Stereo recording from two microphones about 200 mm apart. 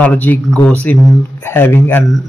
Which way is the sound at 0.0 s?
10° left (ahead or behind).